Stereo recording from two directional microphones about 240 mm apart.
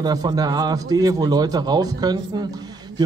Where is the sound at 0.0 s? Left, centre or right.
Centre.